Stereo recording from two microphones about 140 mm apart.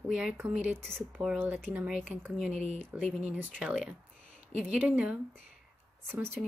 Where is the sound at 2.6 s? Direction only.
60° left (ahead or behind).